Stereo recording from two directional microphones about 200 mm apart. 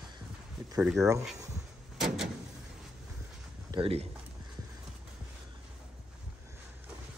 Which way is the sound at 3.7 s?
30° right (ahead or behind).